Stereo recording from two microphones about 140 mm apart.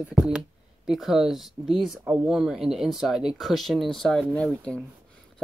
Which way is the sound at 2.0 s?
10° right (ahead or behind).